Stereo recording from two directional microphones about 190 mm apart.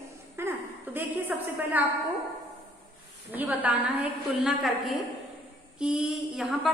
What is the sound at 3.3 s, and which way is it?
Speech, 10° right (ahead or behind).